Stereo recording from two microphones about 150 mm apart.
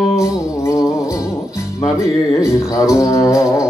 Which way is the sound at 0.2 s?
20° left (ahead or behind).